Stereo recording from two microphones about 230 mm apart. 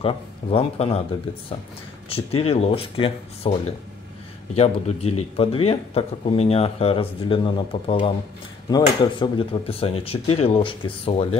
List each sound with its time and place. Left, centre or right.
0.0 s speech: left
2.0 s speech: left
4.6 s speech: left